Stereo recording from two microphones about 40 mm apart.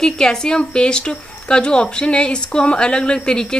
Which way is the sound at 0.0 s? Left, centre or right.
Centre.